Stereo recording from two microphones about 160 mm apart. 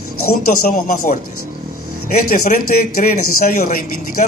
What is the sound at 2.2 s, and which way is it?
A man's voice, 60° left (ahead or behind).